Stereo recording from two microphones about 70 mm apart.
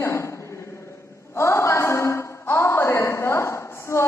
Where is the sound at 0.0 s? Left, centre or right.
Left.